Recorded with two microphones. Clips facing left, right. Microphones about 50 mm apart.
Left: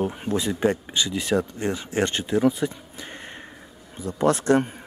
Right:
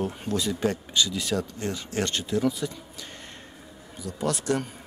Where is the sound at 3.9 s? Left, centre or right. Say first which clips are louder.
Left 7 dB; left.